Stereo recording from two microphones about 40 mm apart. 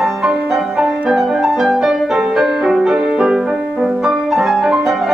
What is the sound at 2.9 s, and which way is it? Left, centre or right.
Music, centre.